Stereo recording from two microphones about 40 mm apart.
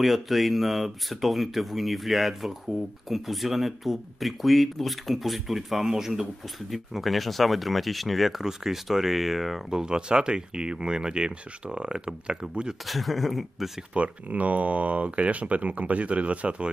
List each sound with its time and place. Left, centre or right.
0.0 s speech: centre
9.7 s speech: centre
12.8 s speech: centre
13.9 s speech: right